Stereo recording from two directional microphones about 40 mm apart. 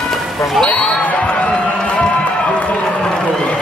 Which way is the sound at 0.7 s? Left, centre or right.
Left.